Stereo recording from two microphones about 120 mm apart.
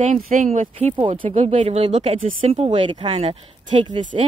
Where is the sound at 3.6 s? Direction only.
40° right (ahead or behind).